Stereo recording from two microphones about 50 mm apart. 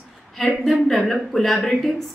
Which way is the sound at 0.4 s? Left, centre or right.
Centre.